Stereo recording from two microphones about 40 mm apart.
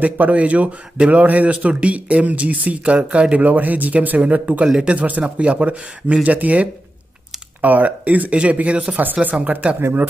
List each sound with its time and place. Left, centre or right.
0.0 s speech: right
3.3 s speech: right